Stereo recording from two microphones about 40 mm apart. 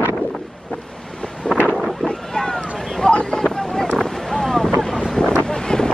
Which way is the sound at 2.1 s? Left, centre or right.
Centre.